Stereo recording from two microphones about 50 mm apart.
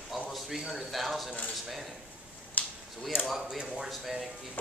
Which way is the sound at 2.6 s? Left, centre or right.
Left.